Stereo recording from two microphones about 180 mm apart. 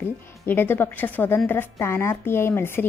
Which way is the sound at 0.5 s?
10° left (ahead or behind).